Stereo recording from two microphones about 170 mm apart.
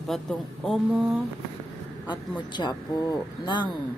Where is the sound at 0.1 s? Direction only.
Centre (ahead or behind).